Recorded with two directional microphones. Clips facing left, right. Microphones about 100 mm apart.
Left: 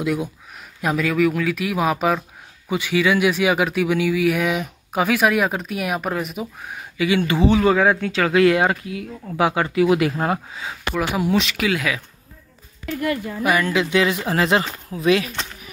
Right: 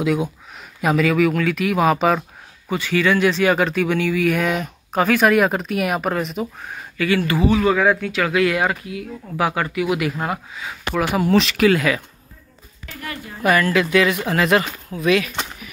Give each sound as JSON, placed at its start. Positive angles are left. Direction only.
{"t": 0.0, "sound": "speech", "side_deg": 0}
{"t": 2.7, "sound": "speech", "side_deg": 10}
{"t": 7.0, "sound": "speech", "side_deg": 20}
{"t": 11.0, "sound": "speech", "side_deg": 0}
{"t": 13.4, "sound": "speech", "side_deg": 15}